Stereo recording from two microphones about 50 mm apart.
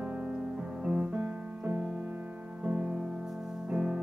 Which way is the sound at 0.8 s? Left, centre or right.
Right.